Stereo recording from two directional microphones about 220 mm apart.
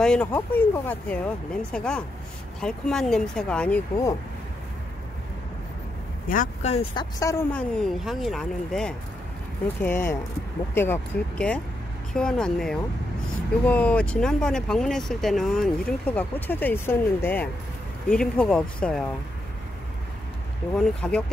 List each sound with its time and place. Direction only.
0.0 s speech: 5° left (ahead or behind)
6.2 s speech: 40° left (ahead or behind); by 7.3 s 15° left (ahead or behind)
7.5 s speech: 5° left (ahead or behind)
20.7 s speech: 5° left (ahead or behind)